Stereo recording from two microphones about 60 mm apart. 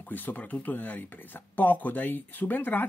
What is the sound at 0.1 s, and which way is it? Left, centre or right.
Speech, left.